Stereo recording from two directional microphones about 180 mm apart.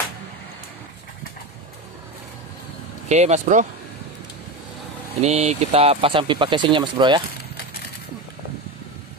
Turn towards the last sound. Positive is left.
turn(degrees=-25)  # may be behind; listen again after turning